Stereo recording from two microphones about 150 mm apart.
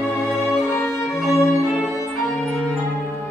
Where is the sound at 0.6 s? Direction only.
15° left (ahead or behind).